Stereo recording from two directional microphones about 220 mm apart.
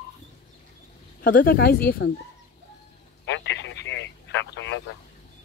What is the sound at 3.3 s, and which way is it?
Telephone, 55° left (ahead or behind).